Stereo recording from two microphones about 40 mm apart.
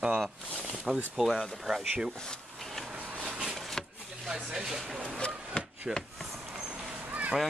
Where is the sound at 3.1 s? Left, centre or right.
Right.